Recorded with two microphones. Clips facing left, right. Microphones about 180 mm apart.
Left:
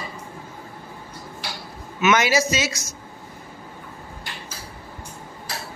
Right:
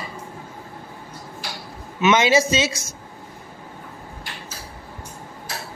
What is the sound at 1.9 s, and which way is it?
Speech, 30° right (ahead or behind).